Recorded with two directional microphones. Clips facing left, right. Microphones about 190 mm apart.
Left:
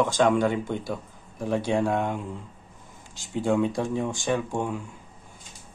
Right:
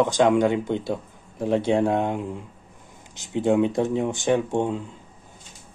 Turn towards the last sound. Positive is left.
turn(degrees=-25)  # may be behind; listen again after turning